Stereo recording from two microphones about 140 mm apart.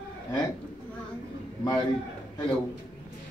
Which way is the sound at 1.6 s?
30° left (ahead or behind).